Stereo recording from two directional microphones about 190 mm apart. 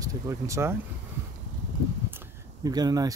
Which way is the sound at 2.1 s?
20° right (ahead or behind).